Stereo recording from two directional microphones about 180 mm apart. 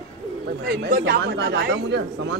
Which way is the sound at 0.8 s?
70° right (ahead or behind).